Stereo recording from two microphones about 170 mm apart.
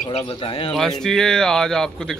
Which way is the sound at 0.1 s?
30° left (ahead or behind).